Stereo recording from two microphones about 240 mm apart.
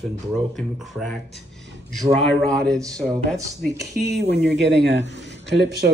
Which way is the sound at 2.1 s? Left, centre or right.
Centre.